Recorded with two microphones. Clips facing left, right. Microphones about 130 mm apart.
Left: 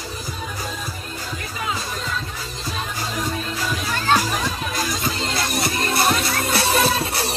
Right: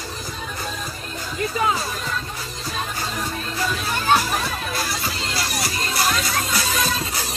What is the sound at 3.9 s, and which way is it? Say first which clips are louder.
Music: even; 15° right (ahead or behind).